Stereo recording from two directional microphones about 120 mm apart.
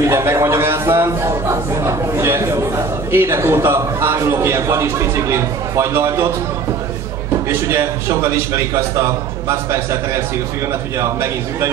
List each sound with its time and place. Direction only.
0.0 s a man's voice: 25° right (ahead or behind)
7.4 s a man's voice: 25° right (ahead or behind)